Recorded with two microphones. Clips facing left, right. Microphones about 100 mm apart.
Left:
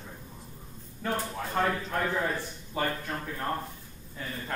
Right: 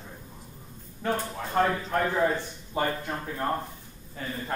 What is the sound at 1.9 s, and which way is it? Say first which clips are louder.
A man's voice: right 4 dB; 20° right (ahead or behind).